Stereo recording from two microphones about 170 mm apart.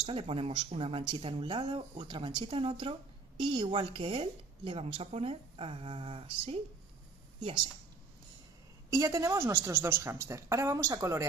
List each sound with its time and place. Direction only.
0.0 s speech: 35° right (ahead or behind)
8.9 s a woman's voice: 20° right (ahead or behind)